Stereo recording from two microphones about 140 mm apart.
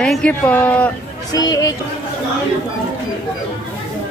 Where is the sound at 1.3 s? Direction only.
30° left (ahead or behind).